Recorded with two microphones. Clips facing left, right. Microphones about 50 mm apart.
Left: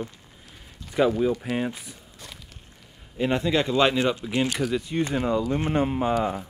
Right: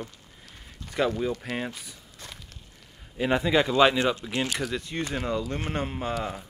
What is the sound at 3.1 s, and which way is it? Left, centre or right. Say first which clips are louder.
Speech: even; centre.